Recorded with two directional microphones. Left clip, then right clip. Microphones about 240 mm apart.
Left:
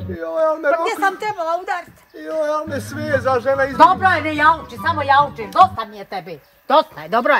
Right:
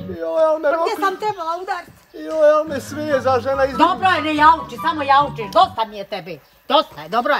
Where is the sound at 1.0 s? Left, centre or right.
Left.